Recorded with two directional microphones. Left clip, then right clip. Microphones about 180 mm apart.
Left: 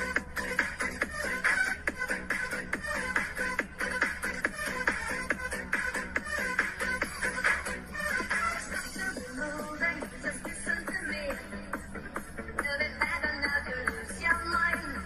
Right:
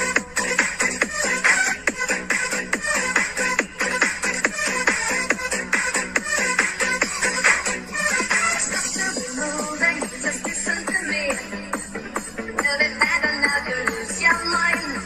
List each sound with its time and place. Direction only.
0.0 s music: 35° right (ahead or behind)